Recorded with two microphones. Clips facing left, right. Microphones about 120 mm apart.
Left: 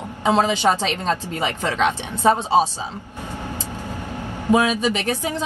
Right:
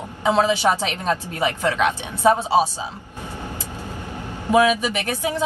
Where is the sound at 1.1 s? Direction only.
20° left (ahead or behind).